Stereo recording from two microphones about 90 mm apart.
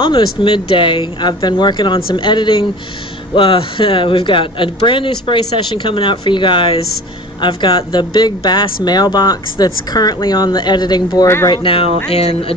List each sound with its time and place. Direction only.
0.0 s speech: 65° left (ahead or behind)
3.3 s speech: 75° left (ahead or behind); by 11.2 s 50° left (ahead or behind)
11.6 s speech: 90° left